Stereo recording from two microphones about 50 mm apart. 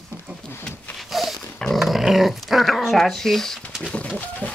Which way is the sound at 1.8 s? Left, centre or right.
Centre.